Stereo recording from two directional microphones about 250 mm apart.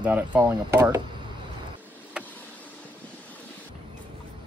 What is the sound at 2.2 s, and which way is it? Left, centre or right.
Vehicle, centre.